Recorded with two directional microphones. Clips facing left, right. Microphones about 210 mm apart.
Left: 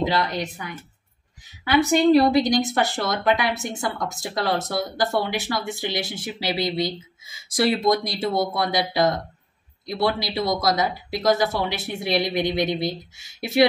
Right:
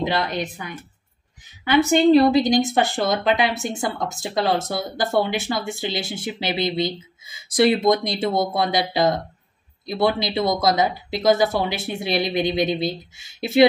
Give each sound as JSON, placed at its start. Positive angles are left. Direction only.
{"t": 0.0, "sound": "speech", "side_deg": -20}
{"t": 1.9, "sound": "speech", "side_deg": -25}